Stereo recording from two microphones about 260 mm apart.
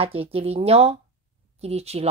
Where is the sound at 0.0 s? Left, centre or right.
Right.